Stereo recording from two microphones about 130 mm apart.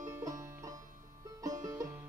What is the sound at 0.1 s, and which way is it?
Music, 25° right (ahead or behind).